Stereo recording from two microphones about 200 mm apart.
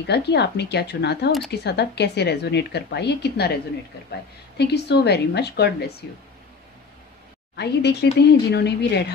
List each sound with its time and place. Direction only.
0.0 s speech: 55° left (ahead or behind)
7.5 s speech: 55° left (ahead or behind)